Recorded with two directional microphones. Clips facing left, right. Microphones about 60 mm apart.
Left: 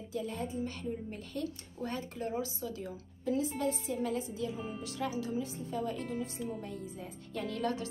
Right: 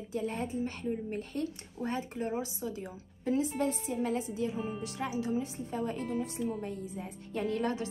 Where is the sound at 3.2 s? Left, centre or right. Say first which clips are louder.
Right 2 dB; right.